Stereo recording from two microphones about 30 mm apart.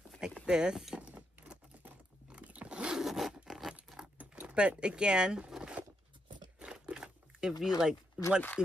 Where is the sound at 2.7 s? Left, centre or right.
Right.